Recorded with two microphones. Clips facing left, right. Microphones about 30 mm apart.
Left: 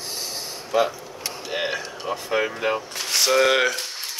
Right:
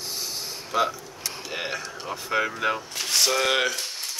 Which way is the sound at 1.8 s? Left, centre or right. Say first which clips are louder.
Left 4 dB; centre.